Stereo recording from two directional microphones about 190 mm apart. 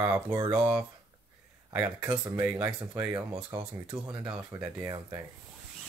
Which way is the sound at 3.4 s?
25° right (ahead or behind).